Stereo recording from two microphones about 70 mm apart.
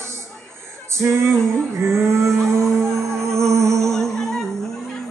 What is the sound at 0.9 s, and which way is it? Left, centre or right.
Music, right.